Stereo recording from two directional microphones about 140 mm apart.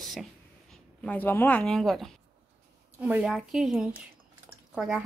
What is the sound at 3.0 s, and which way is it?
A woman's voice, 10° right (ahead or behind).